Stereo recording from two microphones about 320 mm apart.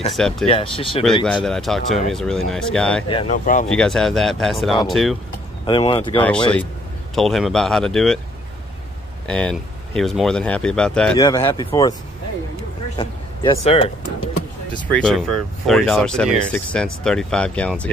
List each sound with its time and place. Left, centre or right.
0.1 s speech: centre
0.5 s speech: centre
1.2 s speech: centre
3.1 s speech: centre
3.6 s speech: centre
5.7 s speech: centre
7.2 s speech: centre
9.3 s speech: centre
12.9 s speech: centre
14.9 s speech: centre